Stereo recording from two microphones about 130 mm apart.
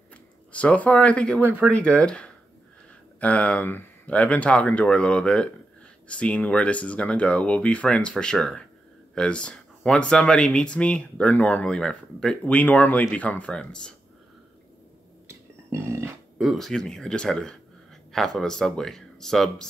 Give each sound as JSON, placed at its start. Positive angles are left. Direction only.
{"t": 0.1, "sound": "speech", "side_deg": 10}
{"t": 1.4, "sound": "speech", "side_deg": -15}
{"t": 1.8, "sound": "speech", "side_deg": 10}
{"t": 15.7, "sound": "a sound", "side_deg": -20}
{"t": 16.3, "sound": "speech", "side_deg": 0}